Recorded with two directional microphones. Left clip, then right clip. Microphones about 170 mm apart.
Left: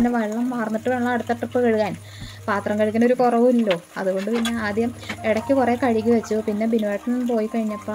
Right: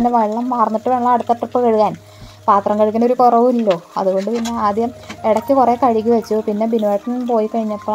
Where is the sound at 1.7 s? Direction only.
20° right (ahead or behind).